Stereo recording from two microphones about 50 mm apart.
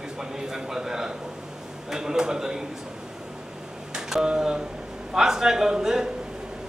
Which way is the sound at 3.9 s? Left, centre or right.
Centre.